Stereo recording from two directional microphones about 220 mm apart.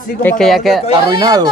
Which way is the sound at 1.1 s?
15° right (ahead or behind).